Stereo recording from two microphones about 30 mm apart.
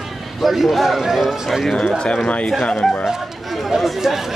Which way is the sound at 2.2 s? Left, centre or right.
Left.